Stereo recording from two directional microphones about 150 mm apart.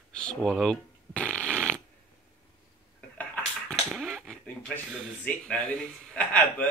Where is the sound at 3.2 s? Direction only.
10° left (ahead or behind).